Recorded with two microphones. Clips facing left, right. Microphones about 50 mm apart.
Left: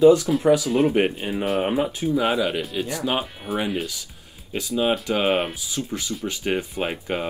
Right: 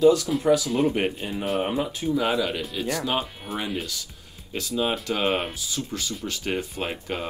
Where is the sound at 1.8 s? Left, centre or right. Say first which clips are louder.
Left 4 dB; left.